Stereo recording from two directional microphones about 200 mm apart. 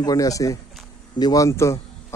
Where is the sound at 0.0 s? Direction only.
15° left (ahead or behind).